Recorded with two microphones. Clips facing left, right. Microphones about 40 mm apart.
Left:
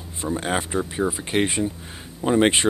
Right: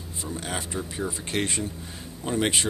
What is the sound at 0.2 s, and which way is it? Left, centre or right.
Speech, left.